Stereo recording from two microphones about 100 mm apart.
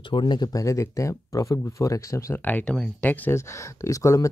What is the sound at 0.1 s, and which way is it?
Speech, 50° left (ahead or behind).